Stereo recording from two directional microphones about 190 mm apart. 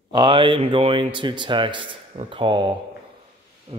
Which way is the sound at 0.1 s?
25° right (ahead or behind).